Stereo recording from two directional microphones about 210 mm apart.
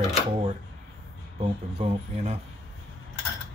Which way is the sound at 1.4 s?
30° right (ahead or behind).